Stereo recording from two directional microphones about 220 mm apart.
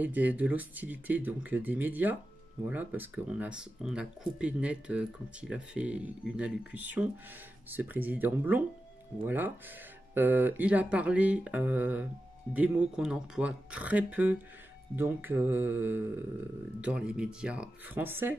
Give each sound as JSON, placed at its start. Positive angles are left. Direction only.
{"t": 0.0, "sound": "speech", "side_deg": -5}